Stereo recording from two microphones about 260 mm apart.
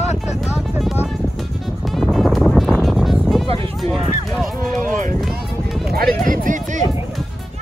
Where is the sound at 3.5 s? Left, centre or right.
Right.